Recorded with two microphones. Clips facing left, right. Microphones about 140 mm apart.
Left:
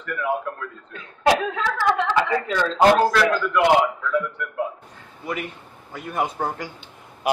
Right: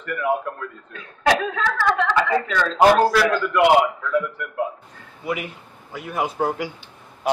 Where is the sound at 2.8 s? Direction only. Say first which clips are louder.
Right 1 dB; 5° right (ahead or behind).